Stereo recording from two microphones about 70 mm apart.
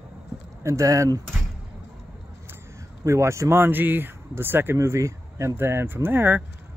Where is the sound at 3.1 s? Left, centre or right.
Right.